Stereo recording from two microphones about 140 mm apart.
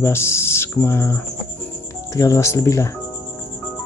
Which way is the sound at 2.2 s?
20° left (ahead or behind).